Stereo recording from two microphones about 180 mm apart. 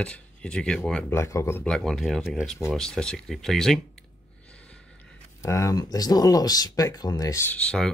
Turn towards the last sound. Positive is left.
turn(degrees=5)  # may be behind; listen again after turning